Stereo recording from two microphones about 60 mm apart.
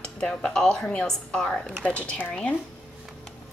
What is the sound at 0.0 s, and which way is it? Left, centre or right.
A woman's voice, centre.